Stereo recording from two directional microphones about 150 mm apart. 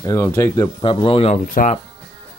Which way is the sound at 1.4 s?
65° left (ahead or behind).